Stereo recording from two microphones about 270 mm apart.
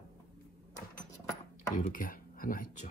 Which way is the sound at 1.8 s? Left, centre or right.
Left.